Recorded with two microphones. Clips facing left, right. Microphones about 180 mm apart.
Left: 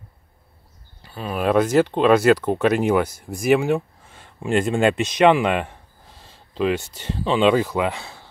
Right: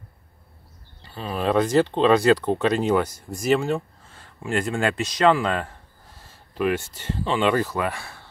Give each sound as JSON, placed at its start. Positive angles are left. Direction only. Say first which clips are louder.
{"t": 1.0, "sound": "speech", "louder": "left 2 dB", "side_deg": 5}